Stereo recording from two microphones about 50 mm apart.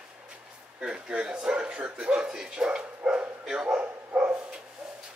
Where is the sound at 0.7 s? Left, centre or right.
Centre.